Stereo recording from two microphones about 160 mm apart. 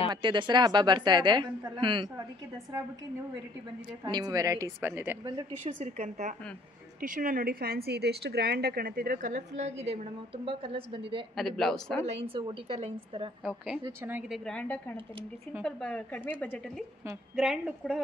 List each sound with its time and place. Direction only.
0.1 s a woman's voice: 30° right (ahead or behind)
4.0 s a woman's voice: 25° right (ahead or behind)
5.8 s a woman's voice: 50° right (ahead or behind)
7.0 s a woman's voice: 60° right (ahead or behind); by 11.2 s 30° right (ahead or behind)
11.3 s a man's voice: centre (ahead or behind)
12.1 s a woman's voice: 35° right (ahead or behind)
13.4 s a man's voice: 5° right (ahead or behind)
14.3 s speech: 5° left (ahead or behind)
17.4 s a man's voice: centre (ahead or behind)